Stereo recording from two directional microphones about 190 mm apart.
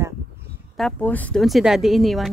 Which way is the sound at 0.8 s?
5° left (ahead or behind).